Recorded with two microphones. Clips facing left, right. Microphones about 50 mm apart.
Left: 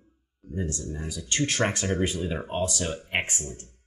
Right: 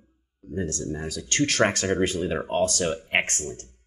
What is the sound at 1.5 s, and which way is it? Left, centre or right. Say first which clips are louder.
Speech: right 5 dB; right.